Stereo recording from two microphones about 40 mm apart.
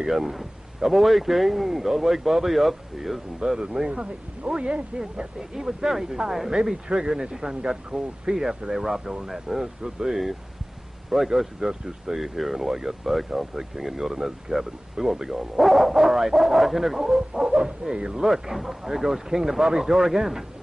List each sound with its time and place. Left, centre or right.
0.1 s speech: centre
3.4 s speech: right
5.5 s speech: centre
9.8 s speech: centre
11.3 s speech: centre; by 18.2 s right
18.2 s speech: centre